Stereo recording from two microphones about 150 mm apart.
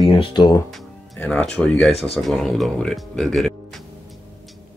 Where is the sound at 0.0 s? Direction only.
35° left (ahead or behind).